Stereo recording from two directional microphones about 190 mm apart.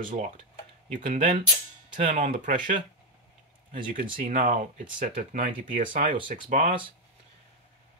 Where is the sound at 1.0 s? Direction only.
30° right (ahead or behind).